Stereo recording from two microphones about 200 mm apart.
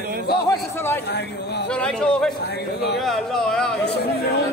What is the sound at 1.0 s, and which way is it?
Speech, 55° left (ahead or behind).